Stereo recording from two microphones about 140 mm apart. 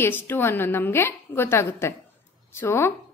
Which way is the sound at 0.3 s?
15° left (ahead or behind).